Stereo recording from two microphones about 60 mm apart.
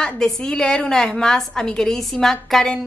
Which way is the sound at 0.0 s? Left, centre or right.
Centre.